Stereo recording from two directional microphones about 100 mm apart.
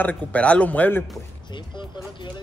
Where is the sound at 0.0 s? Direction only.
15° left (ahead or behind).